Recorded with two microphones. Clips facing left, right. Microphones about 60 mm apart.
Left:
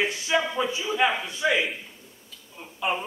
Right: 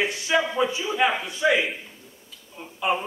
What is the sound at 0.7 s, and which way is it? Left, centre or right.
Speech, centre.